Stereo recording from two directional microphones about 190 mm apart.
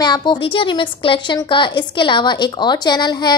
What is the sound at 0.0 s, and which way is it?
A woman's voice, 20° left (ahead or behind).